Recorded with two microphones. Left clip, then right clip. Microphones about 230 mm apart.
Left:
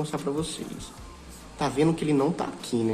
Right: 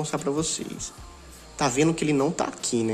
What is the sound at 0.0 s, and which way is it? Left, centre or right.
Speech, right.